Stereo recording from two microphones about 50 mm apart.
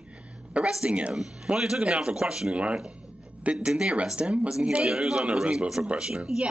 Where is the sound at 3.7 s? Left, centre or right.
Centre.